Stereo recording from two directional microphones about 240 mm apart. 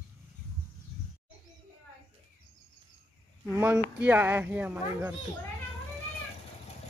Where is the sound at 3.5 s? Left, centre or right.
Centre.